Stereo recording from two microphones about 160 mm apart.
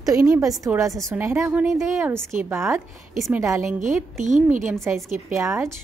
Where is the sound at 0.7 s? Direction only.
20° right (ahead or behind).